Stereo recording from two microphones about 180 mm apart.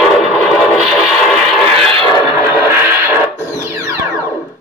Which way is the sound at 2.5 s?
10° right (ahead or behind).